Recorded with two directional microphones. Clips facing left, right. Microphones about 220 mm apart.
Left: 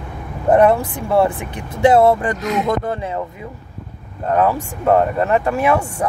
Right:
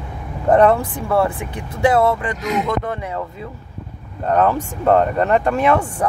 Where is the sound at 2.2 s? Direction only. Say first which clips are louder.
Left 2 dB; 35° left (ahead or behind).